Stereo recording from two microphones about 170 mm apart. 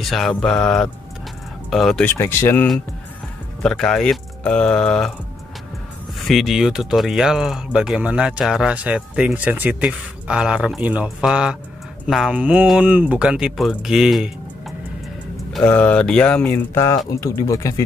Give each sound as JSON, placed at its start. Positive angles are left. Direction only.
{"t": 0.0, "sound": "speech", "side_deg": 0}
{"t": 2.0, "sound": "speech", "side_deg": 15}
{"t": 6.2, "sound": "speech", "side_deg": 0}
{"t": 15.5, "sound": "speech", "side_deg": 5}